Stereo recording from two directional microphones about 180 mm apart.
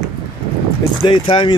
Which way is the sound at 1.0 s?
25° left (ahead or behind).